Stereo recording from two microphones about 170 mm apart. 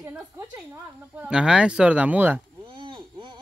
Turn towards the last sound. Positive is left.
turn(degrees=-30)  # may be behind; listen again after turning